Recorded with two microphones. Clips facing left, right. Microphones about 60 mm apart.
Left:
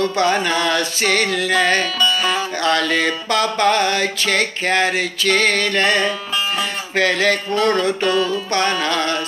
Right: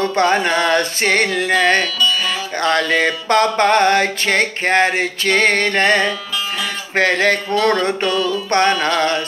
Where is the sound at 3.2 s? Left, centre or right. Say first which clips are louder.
Right 4 dB; right.